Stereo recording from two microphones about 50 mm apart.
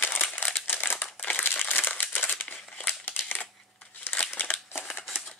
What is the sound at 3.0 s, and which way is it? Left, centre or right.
Crushing, left.